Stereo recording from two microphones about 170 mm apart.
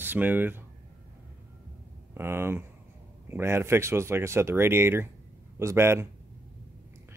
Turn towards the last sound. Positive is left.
turn(degrees=-15)  # may be behind; listen again after turning